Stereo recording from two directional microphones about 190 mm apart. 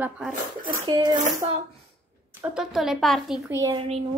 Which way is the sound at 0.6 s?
20° right (ahead or behind).